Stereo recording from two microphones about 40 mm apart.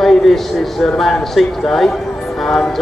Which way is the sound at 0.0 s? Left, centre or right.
Centre.